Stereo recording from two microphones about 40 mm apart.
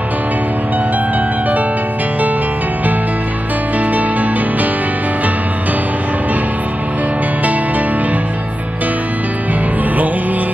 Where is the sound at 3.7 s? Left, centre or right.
Right.